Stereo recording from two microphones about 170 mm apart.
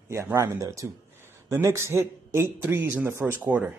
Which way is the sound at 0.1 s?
15° right (ahead or behind).